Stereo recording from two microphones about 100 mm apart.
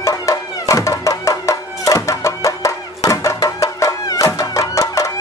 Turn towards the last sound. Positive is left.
turn(degrees=35)  # may be behind; listen again after turning